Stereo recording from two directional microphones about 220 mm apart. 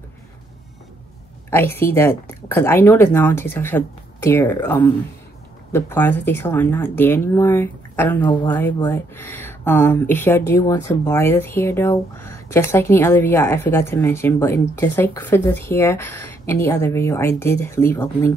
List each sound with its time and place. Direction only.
1.5 s speech: 10° left (ahead or behind)